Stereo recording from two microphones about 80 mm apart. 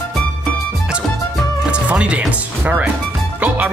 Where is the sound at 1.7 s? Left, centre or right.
Centre.